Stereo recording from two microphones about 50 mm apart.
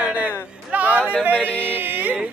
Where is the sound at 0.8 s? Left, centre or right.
Right.